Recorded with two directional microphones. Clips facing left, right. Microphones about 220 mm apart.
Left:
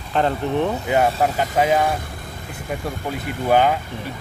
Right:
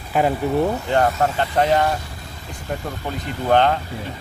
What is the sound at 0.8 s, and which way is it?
Speech, 10° left (ahead or behind).